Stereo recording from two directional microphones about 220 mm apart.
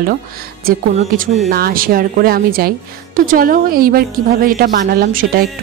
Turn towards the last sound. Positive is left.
turn(degrees=-40)  # may be behind; listen again after turning